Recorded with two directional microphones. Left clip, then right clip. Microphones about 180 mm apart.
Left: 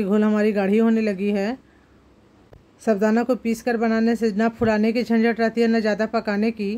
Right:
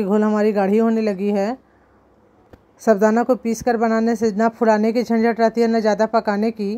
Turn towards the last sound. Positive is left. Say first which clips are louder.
# right 3 dB
turn(degrees=-15)  # may be behind; listen again after turning